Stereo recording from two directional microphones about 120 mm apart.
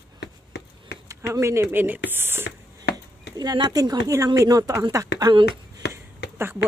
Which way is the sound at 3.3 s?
35° right (ahead or behind).